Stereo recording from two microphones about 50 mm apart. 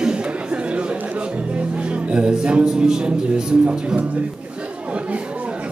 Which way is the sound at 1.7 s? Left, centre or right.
Right.